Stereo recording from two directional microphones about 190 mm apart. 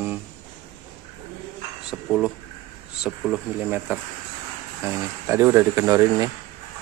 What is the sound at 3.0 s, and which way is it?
Speech, 5° right (ahead or behind).